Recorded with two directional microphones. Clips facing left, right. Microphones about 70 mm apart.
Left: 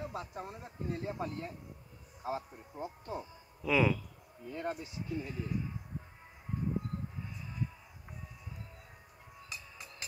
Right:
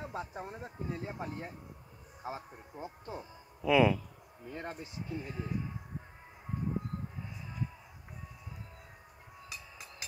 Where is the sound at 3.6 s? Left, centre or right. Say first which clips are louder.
Right 3 dB; right.